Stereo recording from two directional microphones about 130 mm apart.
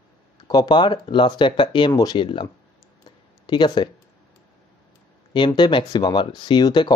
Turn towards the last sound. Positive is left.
turn(degrees=35)  # may be behind; listen again after turning